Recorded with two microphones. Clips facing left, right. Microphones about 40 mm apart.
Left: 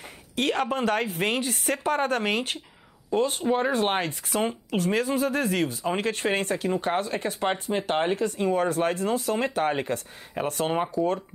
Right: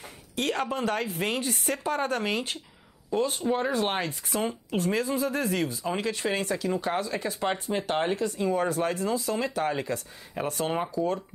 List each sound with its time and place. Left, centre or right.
0.4 s speech: left
3.4 s speech: left
3.7 s speech: left
8.2 s speech: left
10.8 s speech: left